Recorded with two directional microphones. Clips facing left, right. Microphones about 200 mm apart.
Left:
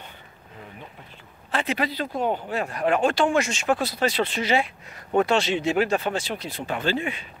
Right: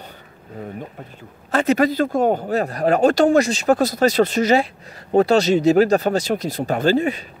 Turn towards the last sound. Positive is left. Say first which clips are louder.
# right 8 dB
turn(degrees=-40)  # may be behind; listen again after turning